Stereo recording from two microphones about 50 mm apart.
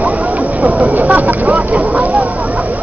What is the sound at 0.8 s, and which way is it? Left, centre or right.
Vehicle, right.